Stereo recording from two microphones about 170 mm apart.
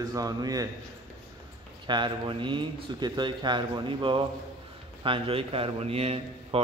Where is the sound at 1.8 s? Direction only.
25° right (ahead or behind).